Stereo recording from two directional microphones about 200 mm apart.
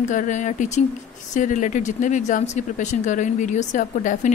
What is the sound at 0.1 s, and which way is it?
A woman's voice, 40° left (ahead or behind).